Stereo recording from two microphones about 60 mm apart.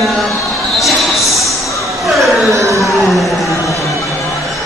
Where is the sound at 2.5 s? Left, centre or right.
Right.